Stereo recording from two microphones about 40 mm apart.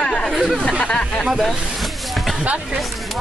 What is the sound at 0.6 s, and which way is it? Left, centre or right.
Speech, left.